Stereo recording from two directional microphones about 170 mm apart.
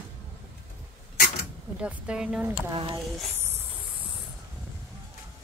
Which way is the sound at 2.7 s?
25° right (ahead or behind).